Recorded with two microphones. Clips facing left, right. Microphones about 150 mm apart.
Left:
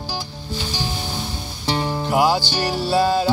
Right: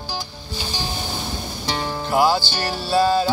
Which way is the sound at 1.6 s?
15° left (ahead or behind).